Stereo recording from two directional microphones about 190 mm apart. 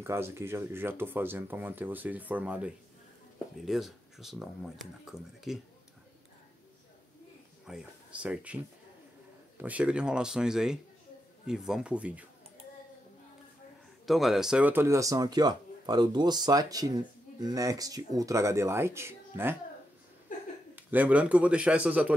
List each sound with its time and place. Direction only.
0.0 s speech: 15° right (ahead or behind)
7.6 s speech: 5° right (ahead or behind)
9.6 s speech: 5° right (ahead or behind)
14.0 s speech: centre (ahead or behind)
20.7 s speech: 10° right (ahead or behind)